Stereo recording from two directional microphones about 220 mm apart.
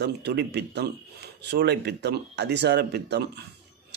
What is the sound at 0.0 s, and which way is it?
A man's voice, 50° right (ahead or behind).